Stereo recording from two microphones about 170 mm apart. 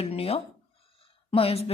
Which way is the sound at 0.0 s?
35° left (ahead or behind).